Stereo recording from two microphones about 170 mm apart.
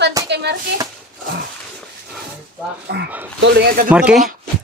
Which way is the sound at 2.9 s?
75° right (ahead or behind).